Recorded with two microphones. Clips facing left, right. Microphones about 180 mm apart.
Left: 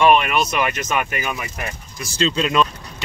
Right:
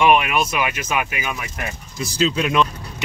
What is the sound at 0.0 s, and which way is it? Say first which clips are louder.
Speech: left 1 dB; 10° right (ahead or behind).